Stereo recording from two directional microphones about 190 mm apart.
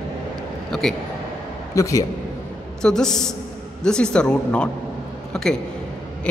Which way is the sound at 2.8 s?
5° left (ahead or behind).